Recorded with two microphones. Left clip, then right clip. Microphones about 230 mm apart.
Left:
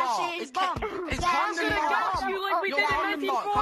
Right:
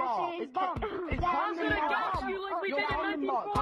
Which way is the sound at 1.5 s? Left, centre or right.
Left.